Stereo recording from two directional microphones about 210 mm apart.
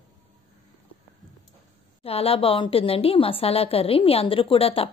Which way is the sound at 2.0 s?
25° left (ahead or behind).